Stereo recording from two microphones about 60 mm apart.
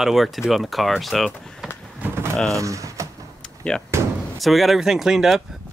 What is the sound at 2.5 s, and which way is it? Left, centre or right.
Speech, right.